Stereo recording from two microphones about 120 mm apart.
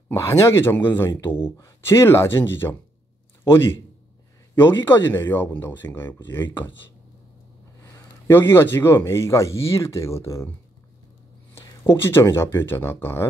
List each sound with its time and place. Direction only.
0.1 s speech: 25° left (ahead or behind)
4.6 s speech: 15° left (ahead or behind)
8.3 s speech: 20° left (ahead or behind)
11.5 s speech: 20° left (ahead or behind)